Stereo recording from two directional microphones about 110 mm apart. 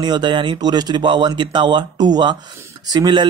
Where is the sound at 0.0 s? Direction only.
40° right (ahead or behind).